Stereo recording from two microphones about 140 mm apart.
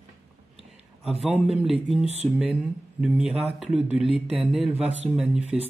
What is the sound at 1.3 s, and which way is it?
Speech, 45° right (ahead or behind).